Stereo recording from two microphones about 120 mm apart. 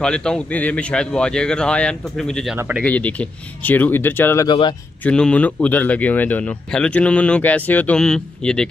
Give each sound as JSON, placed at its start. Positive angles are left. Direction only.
{"t": 0.0, "sound": "speech", "side_deg": 5}
{"t": 2.5, "sound": "speech", "side_deg": -15}
{"t": 2.8, "sound": "speech", "side_deg": 10}
{"t": 4.5, "sound": "speech", "side_deg": 40}
{"t": 5.0, "sound": "speech", "side_deg": 10}